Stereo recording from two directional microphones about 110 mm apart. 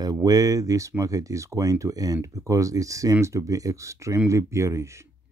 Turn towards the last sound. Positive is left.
turn(degrees=-25)  # may be behind; listen again after turning